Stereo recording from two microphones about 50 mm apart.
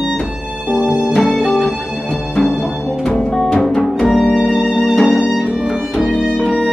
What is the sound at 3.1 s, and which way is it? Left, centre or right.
Music, centre.